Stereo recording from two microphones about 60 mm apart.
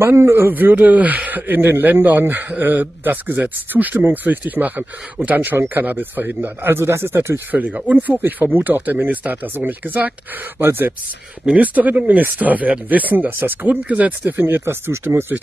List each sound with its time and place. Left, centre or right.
0.0 s speech: right
0.5 s speech: right
7.5 s speech: right
10.6 s speech: right
11.5 s speech: right
14.4 s speech: right